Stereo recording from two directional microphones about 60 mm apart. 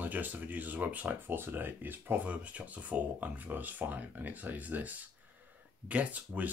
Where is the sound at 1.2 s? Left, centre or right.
Right.